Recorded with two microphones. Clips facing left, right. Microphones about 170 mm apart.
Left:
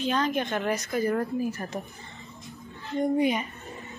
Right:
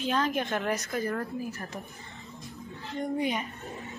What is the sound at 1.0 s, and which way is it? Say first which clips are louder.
Speech: left 6 dB; 20° left (ahead or behind).